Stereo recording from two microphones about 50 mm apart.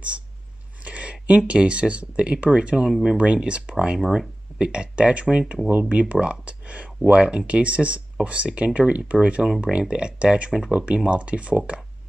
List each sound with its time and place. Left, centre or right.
0.8 s a sound: right
1.2 s speech: right; by 3.2 s centre
3.2 s speech: right
4.0 s speech: centre
4.6 s speech: right